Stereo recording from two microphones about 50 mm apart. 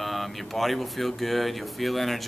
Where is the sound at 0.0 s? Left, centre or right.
Centre.